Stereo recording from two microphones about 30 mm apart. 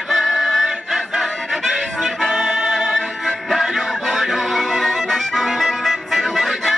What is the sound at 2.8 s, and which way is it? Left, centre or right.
Music, centre.